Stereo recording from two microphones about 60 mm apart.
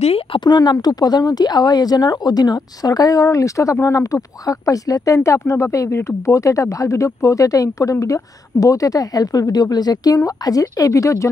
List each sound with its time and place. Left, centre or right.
0.6 s speech: left